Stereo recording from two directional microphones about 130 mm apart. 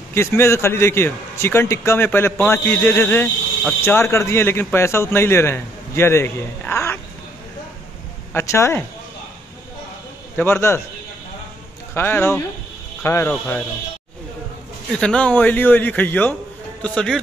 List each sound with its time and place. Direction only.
0.1 s a man's voice: 20° left (ahead or behind)
8.3 s a man's voice: 20° left (ahead or behind)
10.3 s a man's voice: 15° left (ahead or behind)
11.9 s a man's voice: 15° left (ahead or behind)
13.3 s a man's voice: 10° left (ahead or behind)
14.9 s a man's voice: 5° left (ahead or behind)